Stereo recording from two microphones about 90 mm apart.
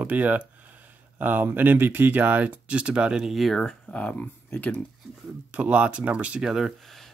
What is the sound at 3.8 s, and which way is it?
Speech, 15° left (ahead or behind).